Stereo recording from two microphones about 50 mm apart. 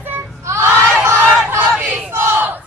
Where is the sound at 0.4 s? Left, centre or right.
Right.